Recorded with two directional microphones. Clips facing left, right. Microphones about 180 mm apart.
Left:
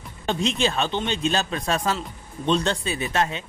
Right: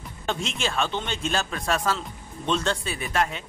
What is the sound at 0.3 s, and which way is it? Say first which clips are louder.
A man's voice: left 5 dB; 20° left (ahead or behind).